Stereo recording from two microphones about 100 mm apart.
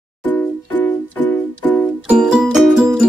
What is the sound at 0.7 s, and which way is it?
Music, 15° left (ahead or behind).